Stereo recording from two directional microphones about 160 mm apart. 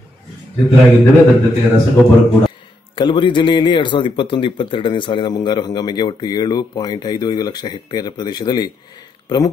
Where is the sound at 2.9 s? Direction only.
30° left (ahead or behind).